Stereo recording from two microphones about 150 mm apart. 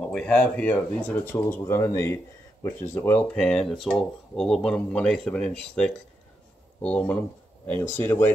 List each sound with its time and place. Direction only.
0.0 s speech: 5° left (ahead or behind)